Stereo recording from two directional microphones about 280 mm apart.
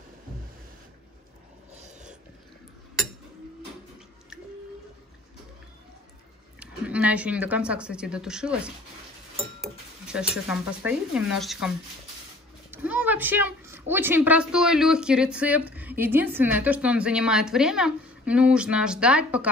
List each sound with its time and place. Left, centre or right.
6.6 s a woman's voice: centre
12.7 s a woman's voice: centre